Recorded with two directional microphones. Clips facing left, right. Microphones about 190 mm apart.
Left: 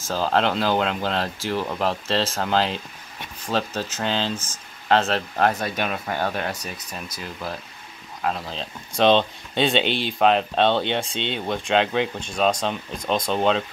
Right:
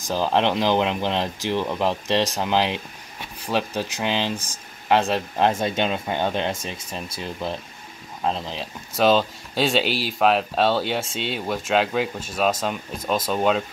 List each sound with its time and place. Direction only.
0.0 s speech: 15° right (ahead or behind)
5.5 s speech: 25° right (ahead or behind)
8.5 s speech: 5° right (ahead or behind)